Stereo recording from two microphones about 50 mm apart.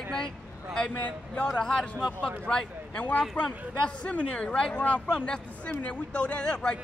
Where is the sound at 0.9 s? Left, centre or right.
Left.